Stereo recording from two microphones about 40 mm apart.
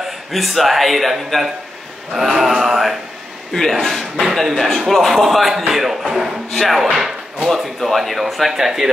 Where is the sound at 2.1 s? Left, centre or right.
Centre.